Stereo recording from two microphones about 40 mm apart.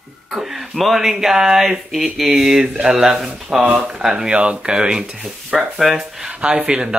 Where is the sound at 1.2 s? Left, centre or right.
Centre.